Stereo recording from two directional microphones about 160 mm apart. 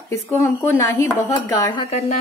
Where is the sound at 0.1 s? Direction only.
15° left (ahead or behind).